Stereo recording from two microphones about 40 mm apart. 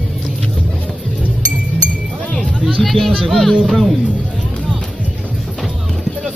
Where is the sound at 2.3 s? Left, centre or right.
Left.